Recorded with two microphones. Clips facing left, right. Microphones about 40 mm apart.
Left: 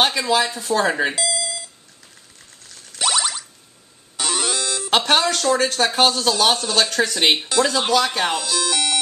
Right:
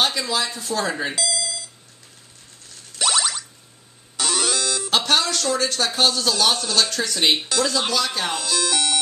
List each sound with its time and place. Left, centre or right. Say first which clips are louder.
0.0 s speech: left 4 dB; left
0.4 s speech: left 5 dB; centre
1.1 s alarm clock: left 1 dB; centre
3.0 s ding: left 1 dB; centre
4.2 s music: even; centre
4.9 s speech: left 3 dB; left
8.3 s speech: left 1 dB; centre